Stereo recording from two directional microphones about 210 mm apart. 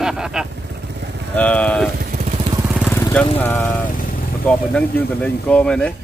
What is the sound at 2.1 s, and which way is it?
Vehicle, 35° right (ahead or behind).